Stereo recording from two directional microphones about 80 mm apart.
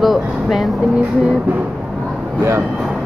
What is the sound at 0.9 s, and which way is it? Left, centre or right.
Music, centre.